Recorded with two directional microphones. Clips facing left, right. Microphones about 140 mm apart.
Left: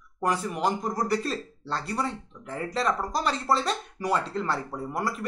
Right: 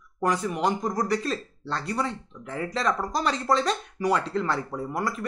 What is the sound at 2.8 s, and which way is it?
Speech, 5° left (ahead or behind).